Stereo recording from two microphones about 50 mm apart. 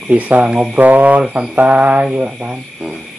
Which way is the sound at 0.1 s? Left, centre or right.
Right.